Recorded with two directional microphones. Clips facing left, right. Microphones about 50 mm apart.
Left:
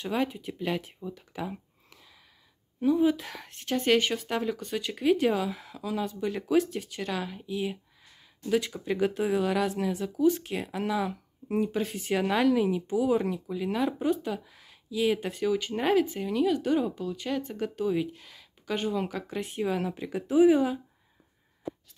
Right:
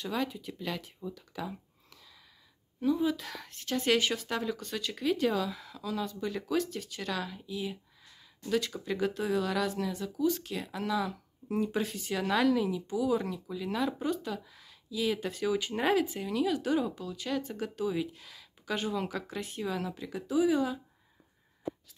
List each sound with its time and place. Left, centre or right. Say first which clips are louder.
0.0 s speech: left 4 dB; left
2.8 s speech: left 5 dB; left
3.8 s speech: left 3 dB; centre; by 8.1 s left
8.1 s a sound: left 4 dB; centre
8.8 s speech: left 4 dB; left
15.4 s speech: left 2 dB; centre
19.3 s speech: left 8 dB; centre